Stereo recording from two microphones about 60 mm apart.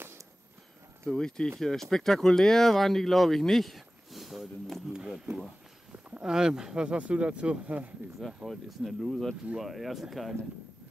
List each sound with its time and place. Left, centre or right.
1.1 s speech: centre
4.9 s speech: centre
8.5 s speech: centre